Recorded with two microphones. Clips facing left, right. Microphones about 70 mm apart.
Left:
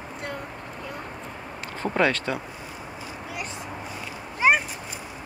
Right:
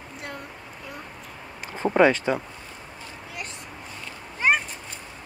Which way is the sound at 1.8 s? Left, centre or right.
Centre.